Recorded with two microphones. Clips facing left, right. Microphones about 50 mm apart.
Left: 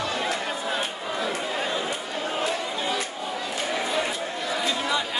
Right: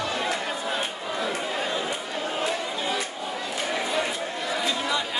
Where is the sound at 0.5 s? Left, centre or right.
Centre.